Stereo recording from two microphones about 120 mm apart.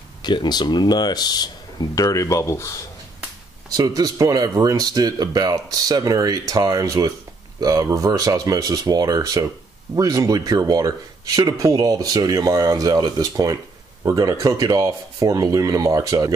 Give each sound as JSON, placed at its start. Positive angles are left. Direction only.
{"t": 0.2, "sound": "speech", "side_deg": 40}
{"t": 3.7, "sound": "speech", "side_deg": -35}